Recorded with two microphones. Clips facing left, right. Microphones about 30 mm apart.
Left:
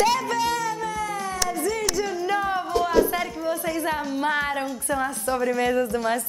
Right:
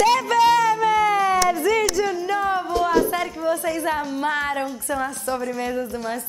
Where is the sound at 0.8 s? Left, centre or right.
Right.